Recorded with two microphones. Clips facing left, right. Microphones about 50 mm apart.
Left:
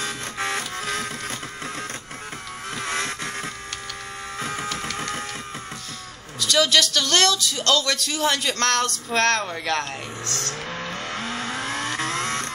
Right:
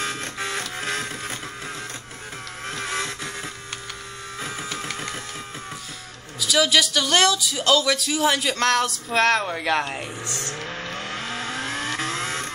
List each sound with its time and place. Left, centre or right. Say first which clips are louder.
0.0 s shuffle: right 1 dB; centre
0.7 s printer: even; centre
2.7 s a sound: left 1 dB; centre
4.4 s printer: left 3 dB; centre
6.4 s speech: even; centre
10.7 s vehicle: left 1 dB; centre